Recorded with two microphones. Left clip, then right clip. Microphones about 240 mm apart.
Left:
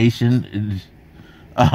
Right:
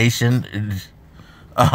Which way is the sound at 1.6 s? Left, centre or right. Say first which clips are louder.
Right 1 dB; centre.